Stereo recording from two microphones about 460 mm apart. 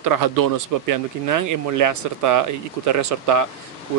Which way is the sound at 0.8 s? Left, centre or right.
Right.